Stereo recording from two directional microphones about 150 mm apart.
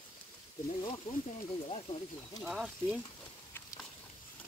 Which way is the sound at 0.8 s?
30° left (ahead or behind).